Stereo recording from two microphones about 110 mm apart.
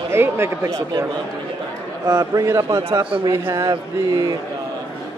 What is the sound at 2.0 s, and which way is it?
A man's voice, 35° right (ahead or behind).